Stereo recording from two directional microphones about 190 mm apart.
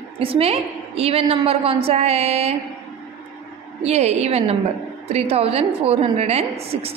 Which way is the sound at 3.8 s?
35° right (ahead or behind).